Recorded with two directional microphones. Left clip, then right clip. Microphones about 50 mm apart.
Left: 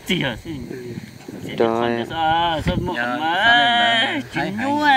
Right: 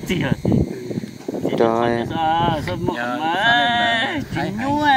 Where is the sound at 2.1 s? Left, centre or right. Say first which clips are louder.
Left 1 dB; left.